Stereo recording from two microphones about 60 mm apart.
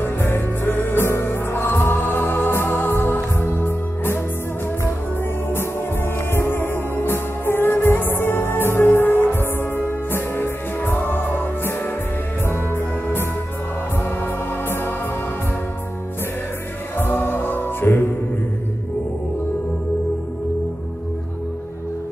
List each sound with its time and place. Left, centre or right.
0.0 s music: left
6.3 s music: left
16.9 s music: left